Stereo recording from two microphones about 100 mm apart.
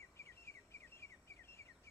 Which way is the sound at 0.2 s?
25° left (ahead or behind).